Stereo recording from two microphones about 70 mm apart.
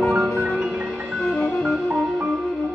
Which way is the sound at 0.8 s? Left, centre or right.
Centre.